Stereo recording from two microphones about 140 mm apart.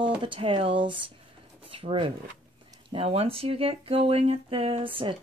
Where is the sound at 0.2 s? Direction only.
40° right (ahead or behind).